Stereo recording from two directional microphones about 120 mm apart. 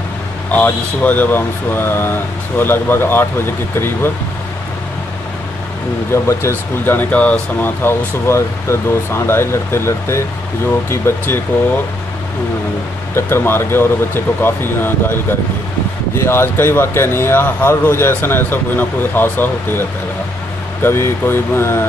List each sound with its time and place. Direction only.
0.5 s speech: 15° left (ahead or behind)
6.2 s speech: 20° left (ahead or behind)
13.1 s speech: 20° left (ahead or behind)